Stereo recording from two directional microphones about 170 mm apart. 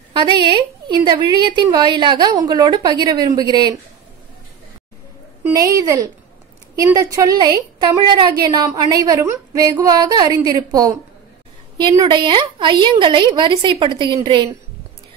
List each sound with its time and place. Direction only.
0.1 s a woman's voice: 25° right (ahead or behind)
5.4 s a woman's voice: 20° right (ahead or behind)